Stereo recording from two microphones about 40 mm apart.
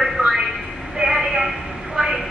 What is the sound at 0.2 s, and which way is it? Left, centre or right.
Vehicle, right.